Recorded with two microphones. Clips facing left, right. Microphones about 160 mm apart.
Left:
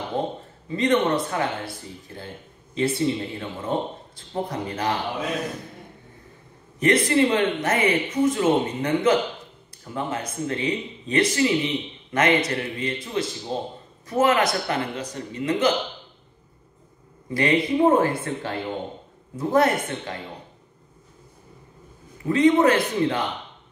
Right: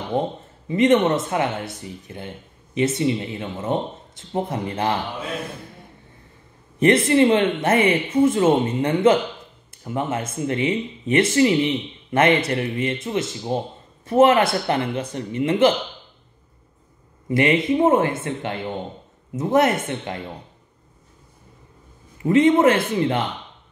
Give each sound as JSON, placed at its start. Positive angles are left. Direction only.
{"t": 0.1, "sound": "a man's voice", "side_deg": -15}
{"t": 6.8, "sound": "speech", "side_deg": -25}
{"t": 17.3, "sound": "speech", "side_deg": -20}
{"t": 22.3, "sound": "speech", "side_deg": -25}